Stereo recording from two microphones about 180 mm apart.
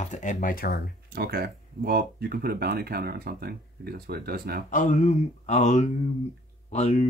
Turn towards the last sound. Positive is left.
turn(degrees=40)  # may be behind; listen again after turning